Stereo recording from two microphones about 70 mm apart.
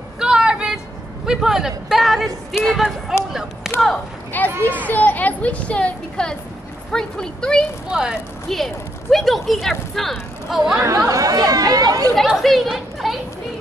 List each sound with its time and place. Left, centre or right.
0.2 s a sound: centre
1.2 s a man's voice: centre
3.6 s a sound: centre
4.3 s a woman's voice: left; by 7.6 s centre
7.9 s a man's voice: centre
8.5 s speech: centre
10.8 s speech: right
11.3 s speech: right
12.3 s speech: centre